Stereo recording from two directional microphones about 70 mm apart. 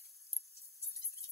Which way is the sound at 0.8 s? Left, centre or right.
Left.